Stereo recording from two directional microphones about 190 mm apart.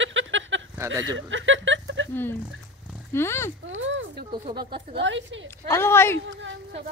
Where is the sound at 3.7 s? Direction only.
80° right.